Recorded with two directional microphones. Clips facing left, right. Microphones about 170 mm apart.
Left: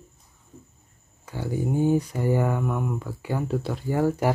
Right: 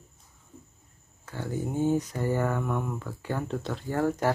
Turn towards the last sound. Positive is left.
turn(degrees=10)  # may be behind; listen again after turning